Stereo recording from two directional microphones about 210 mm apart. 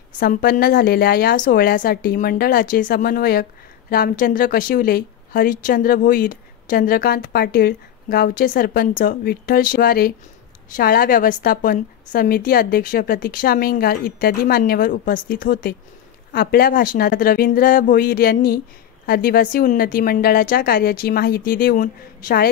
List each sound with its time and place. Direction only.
0.2 s speech: 45° left (ahead or behind)